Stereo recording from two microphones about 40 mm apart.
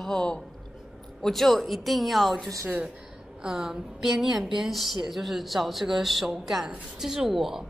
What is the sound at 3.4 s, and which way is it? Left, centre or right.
Speech, centre.